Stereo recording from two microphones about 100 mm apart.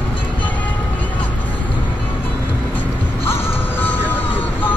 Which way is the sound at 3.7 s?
20° left (ahead or behind).